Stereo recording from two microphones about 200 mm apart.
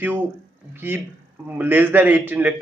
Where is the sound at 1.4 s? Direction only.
10° right (ahead or behind).